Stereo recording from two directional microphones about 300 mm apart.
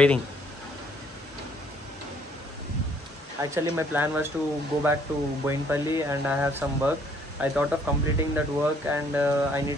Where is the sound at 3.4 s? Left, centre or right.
Centre.